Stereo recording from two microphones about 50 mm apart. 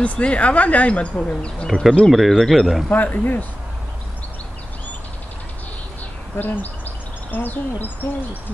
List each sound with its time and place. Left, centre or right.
0.0 s speech: left
1.7 s speech: centre
2.9 s speech: left
6.3 s speech: left